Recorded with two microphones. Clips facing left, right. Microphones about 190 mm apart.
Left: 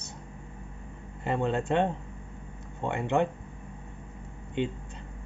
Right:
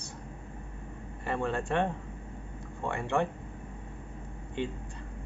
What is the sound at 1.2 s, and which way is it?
Speech, 20° left (ahead or behind).